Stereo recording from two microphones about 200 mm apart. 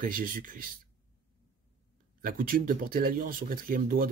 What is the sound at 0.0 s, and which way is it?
Speech, 45° right (ahead or behind).